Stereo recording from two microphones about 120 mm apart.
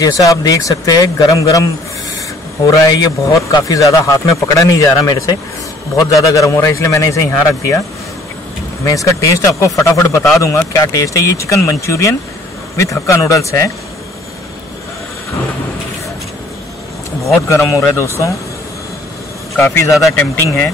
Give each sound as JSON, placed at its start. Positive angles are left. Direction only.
{"t": 0.0, "sound": "speech", "side_deg": 30}
{"t": 8.8, "sound": "speech", "side_deg": 25}
{"t": 17.5, "sound": "speech", "side_deg": 25}
{"t": 19.5, "sound": "speech", "side_deg": 20}